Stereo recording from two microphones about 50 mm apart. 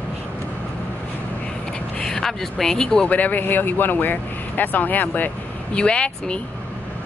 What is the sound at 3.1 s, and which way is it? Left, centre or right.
Speech, left.